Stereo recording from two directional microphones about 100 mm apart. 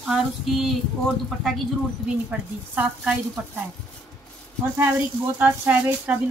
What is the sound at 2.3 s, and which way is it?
Speech, 10° right (ahead or behind).